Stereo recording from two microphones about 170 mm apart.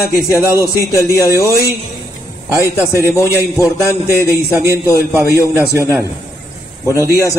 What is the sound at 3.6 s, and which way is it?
Music, 15° right (ahead or behind).